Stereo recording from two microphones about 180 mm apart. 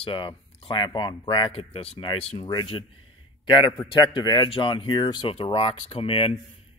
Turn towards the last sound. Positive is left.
turn(degrees=30)  # may be behind; listen again after turning